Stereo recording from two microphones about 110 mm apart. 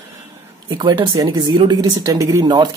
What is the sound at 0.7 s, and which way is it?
Speech, 40° right (ahead or behind).